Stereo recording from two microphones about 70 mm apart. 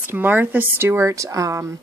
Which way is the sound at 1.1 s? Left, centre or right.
Right.